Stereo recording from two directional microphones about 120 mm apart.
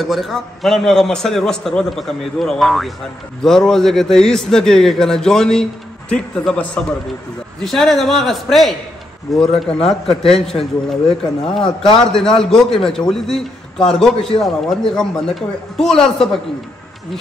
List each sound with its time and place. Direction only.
0.0 s a man's voice: centre (ahead or behind)